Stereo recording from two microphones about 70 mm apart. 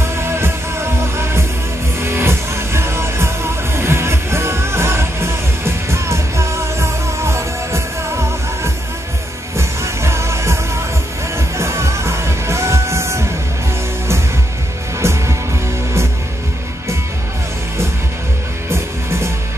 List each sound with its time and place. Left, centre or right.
0.0 s music: right
15.0 s music: right